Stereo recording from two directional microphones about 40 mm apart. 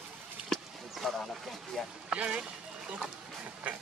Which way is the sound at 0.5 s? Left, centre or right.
Centre.